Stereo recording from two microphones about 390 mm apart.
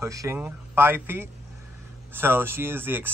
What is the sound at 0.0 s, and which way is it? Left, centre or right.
Speech, centre.